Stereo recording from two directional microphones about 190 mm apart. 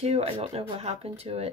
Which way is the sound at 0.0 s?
35° right (ahead or behind).